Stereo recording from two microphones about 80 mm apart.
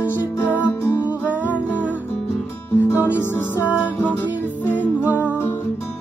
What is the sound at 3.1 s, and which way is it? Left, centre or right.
Music, left.